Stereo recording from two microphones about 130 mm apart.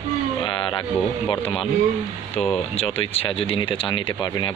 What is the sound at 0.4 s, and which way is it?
Speech, 40° left (ahead or behind).